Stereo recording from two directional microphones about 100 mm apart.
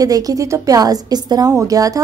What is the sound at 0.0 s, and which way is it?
A woman's voice, 35° right (ahead or behind).